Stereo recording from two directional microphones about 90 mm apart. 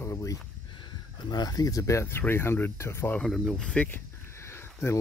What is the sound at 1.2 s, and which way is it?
Speech, 45° left (ahead or behind).